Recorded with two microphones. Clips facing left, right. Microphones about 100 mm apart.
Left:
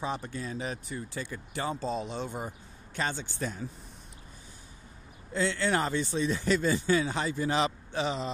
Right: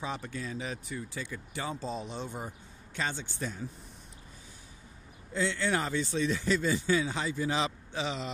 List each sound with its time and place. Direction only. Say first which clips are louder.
0.0 s a man's voice: left 2 dB; 30° left (ahead or behind)
1.8 s speech: left 4 dB; 90° left; by 3.5 s 50° left (ahead or behind)
5.3 s a man's voice: left 2 dB; 50° left (ahead or behind)
6.1 s speech: right 1 dB; 35° left (ahead or behind)
6.4 s a man's voice: left 2 dB; 60° left (ahead or behind)